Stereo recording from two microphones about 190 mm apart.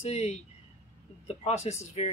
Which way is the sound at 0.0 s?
35° left (ahead or behind).